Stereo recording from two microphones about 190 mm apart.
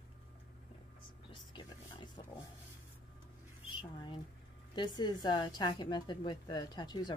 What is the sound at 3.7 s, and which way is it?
A woman's voice, 25° left (ahead or behind).